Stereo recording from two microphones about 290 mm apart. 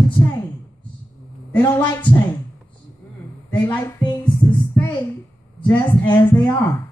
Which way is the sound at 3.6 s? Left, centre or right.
Centre.